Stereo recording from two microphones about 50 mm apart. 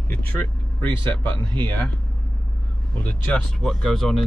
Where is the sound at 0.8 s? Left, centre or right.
Left.